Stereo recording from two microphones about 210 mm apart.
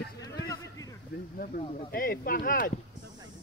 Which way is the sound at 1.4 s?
40° left (ahead or behind).